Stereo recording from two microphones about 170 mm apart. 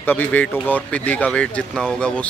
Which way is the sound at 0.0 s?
10° left (ahead or behind).